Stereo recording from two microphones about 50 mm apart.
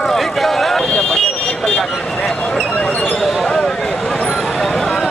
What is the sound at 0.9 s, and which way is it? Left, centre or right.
Vehicle, centre.